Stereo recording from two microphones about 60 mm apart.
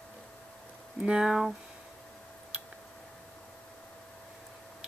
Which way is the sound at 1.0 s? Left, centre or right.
Centre.